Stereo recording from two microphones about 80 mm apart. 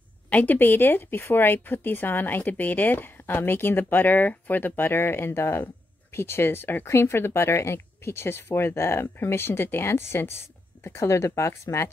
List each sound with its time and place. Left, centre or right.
0.3 s speech: left